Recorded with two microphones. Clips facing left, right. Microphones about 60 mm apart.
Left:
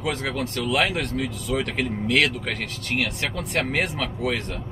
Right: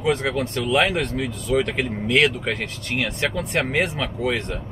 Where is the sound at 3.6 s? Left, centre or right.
Centre.